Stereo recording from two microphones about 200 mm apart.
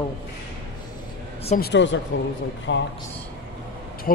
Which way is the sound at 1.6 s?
60° left (ahead or behind).